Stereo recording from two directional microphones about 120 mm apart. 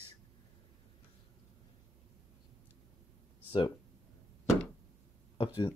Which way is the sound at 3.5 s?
40° left (ahead or behind).